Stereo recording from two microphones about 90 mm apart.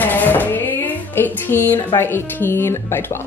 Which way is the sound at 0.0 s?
20° left (ahead or behind).